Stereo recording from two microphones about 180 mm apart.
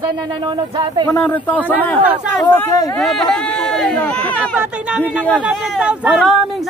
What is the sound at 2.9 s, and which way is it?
Speech, centre (ahead or behind).